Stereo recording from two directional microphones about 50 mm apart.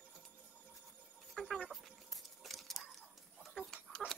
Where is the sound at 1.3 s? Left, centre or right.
Centre.